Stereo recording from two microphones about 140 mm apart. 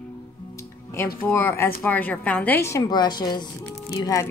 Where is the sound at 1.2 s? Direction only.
20° left (ahead or behind).